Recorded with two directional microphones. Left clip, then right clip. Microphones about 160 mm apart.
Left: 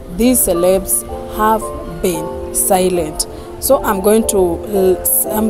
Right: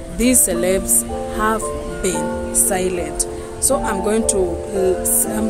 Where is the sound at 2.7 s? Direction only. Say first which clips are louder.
Left 9 dB; 30° left (ahead or behind).